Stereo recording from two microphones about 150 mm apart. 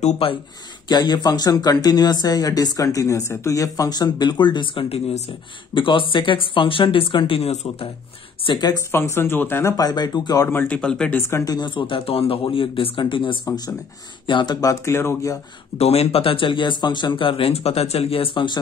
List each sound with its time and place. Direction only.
0.0 s speech: 35° left (ahead or behind)
8.5 s speech: 25° left (ahead or behind)
8.9 s speech: 15° left (ahead or behind)
10.5 s speech: 10° left (ahead or behind); by 13.4 s 35° left (ahead or behind)
13.5 s speech: 20° left (ahead or behind)
15.8 s speech: 45° left (ahead or behind)